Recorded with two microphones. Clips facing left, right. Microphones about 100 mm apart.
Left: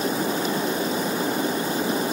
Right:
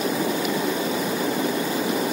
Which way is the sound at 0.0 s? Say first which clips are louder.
Right 1 dB; 35° left (ahead or behind).